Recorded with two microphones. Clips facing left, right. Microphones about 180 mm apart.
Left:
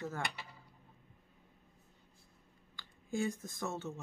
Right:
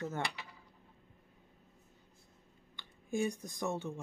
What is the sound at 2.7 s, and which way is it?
Speech, 20° right (ahead or behind).